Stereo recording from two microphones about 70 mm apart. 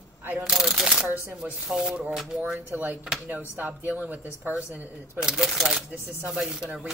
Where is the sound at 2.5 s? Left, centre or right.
Right.